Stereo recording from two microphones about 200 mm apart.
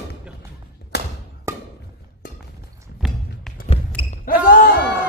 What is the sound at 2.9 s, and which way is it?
Music, 50° left (ahead or behind).